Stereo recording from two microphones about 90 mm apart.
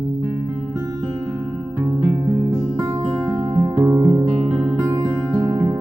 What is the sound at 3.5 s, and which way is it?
Music, 25° right (ahead or behind).